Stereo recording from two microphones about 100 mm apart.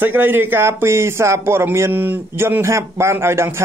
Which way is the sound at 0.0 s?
20° right (ahead or behind).